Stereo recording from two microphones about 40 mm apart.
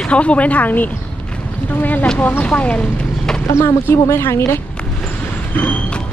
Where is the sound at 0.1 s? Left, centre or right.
Left.